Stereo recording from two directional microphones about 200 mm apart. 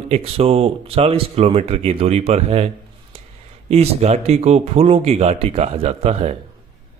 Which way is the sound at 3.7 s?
30° right (ahead or behind).